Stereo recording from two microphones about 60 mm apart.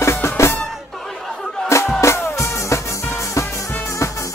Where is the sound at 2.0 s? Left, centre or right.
Left.